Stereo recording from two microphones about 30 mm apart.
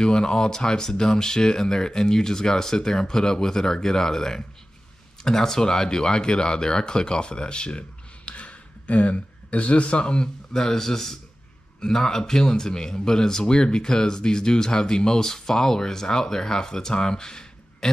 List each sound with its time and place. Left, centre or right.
0.0 s speech: centre
8.3 s a sound: left
10.0 s a man's voice: left
10.8 s a man's voice: centre